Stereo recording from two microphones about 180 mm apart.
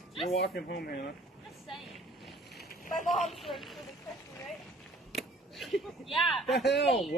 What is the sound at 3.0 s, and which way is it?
Speech, centre (ahead or behind).